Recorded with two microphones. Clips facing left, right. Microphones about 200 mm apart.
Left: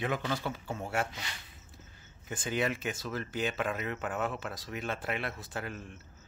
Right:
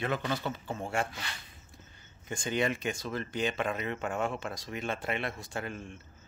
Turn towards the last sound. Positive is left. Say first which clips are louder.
# right 2 dB
turn(degrees=5)  # may be behind; listen again after turning